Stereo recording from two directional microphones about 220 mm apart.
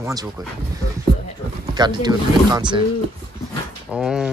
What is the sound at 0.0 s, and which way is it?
Speech, 15° right (ahead or behind).